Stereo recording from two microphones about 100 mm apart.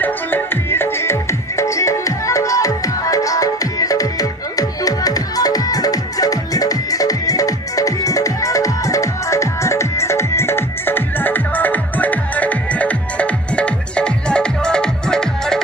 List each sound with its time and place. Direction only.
0.0 s music: 20° left (ahead or behind)